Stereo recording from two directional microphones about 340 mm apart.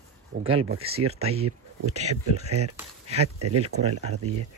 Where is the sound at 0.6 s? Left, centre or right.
Right.